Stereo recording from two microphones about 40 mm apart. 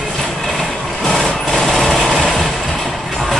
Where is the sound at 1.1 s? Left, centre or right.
Centre.